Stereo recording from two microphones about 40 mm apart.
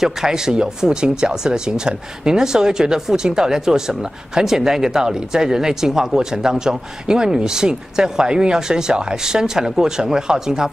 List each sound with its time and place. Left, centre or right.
0.0 s speech: centre